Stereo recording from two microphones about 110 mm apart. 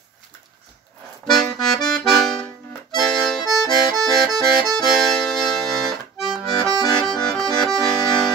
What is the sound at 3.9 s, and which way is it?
Accordion, 35° right (ahead or behind).